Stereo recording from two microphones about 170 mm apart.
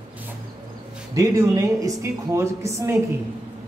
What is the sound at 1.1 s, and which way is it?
A man's voice, 20° right (ahead or behind).